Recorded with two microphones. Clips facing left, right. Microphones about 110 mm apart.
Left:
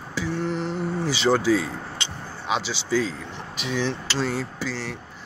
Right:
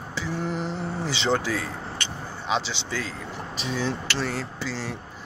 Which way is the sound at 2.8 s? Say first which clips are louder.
Left 8 dB; 15° left (ahead or behind).